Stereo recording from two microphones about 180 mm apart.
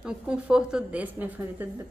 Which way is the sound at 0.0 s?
5° right (ahead or behind).